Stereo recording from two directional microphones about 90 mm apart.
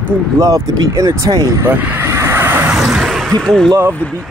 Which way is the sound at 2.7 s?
10° right (ahead or behind).